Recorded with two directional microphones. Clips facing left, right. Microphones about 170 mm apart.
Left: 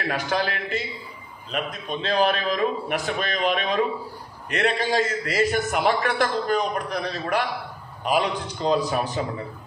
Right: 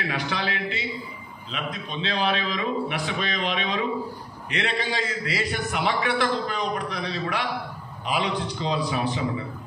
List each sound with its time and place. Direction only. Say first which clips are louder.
0.1 s a man's voice: left 3 dB; 45° left (ahead or behind)